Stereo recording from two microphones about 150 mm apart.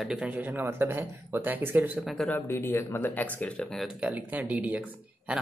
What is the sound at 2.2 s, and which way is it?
Speech, 15° left (ahead or behind).